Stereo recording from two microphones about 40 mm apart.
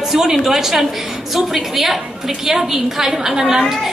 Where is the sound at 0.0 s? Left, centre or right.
Centre.